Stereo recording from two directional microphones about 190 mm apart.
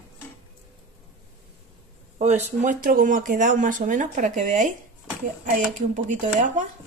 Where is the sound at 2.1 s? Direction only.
35° right (ahead or behind).